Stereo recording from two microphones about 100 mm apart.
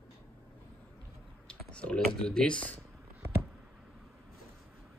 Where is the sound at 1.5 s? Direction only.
10° left (ahead or behind).